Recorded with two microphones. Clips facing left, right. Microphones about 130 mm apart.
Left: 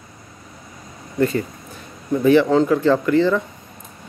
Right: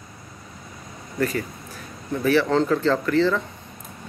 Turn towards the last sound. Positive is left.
turn(degrees=15)  # may be behind; listen again after turning